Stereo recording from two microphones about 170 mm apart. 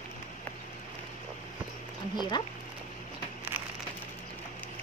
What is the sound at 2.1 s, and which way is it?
Speech, 25° left (ahead or behind).